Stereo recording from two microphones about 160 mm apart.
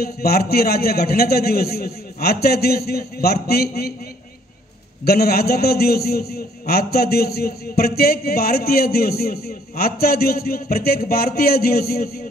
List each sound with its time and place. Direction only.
0.0 s a man's voice: 75° left (ahead or behind)
5.0 s a man's voice: 75° left (ahead or behind)